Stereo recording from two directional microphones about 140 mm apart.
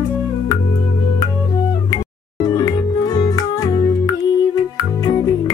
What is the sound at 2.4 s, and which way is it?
Music, 30° left (ahead or behind).